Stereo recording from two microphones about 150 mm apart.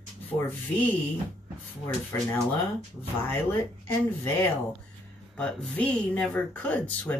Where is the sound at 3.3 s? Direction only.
15° left (ahead or behind).